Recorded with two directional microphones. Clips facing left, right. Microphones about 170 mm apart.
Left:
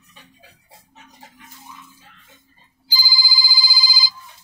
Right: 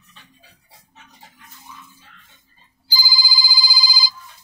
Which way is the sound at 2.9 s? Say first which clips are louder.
Right 1 dB; 45° right (ahead or behind).